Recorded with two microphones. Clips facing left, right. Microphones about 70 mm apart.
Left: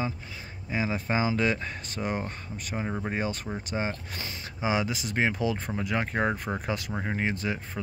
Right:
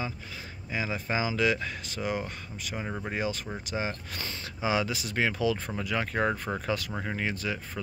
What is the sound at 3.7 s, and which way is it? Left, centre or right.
Speech, centre.